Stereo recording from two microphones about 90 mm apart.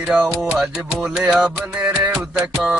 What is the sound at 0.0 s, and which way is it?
Music, 20° right (ahead or behind).